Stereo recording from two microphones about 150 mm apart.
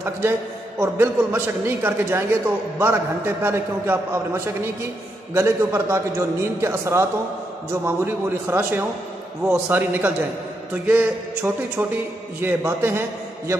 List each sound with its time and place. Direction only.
0.7 s a man's voice: 15° right (ahead or behind)